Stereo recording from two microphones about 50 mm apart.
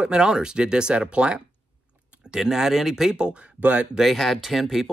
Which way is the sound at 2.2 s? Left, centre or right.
Centre.